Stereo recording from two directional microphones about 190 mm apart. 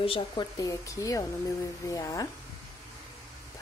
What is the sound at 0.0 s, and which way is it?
Speech, 25° left (ahead or behind).